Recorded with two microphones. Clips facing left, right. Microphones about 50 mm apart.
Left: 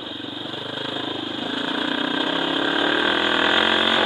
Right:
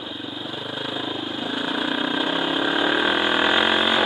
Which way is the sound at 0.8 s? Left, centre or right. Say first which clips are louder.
Even; centre.